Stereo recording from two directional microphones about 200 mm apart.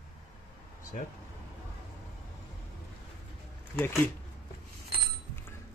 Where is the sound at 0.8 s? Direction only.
40° left (ahead or behind).